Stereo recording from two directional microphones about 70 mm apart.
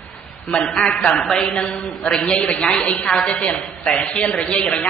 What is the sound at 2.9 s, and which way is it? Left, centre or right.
A woman's voice, left.